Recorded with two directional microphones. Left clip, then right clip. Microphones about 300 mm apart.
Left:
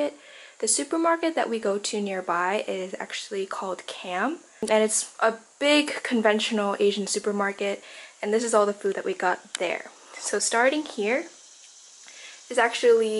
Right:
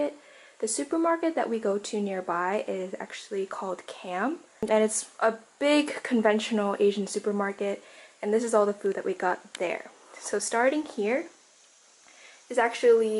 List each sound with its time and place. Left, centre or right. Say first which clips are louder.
0.6 s speech: left 2 dB; centre
3.4 s speech: left 3 dB; centre
3.7 s speech: left 3 dB; centre
12.4 s speech: left 2 dB; centre